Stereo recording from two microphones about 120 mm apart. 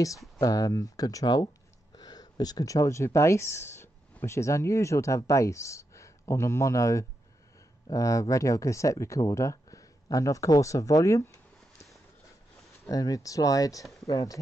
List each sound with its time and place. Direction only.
0.4 s speech: 30° left (ahead or behind)
12.8 s speech: 30° left (ahead or behind)